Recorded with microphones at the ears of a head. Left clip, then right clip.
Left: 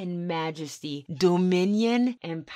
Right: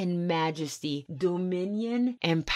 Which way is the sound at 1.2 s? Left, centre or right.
Left.